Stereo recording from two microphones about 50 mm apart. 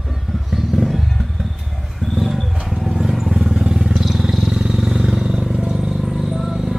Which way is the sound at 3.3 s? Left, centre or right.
Centre.